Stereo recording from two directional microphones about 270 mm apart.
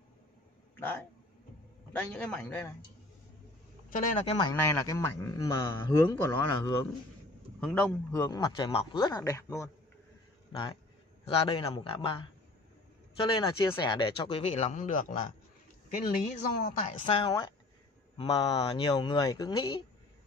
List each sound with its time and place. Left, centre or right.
0.7 s a man's voice: centre
3.9 s a man's voice: left
17.0 s a man's voice: centre